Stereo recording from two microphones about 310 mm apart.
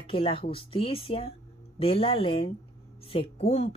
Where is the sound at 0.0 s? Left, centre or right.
Centre.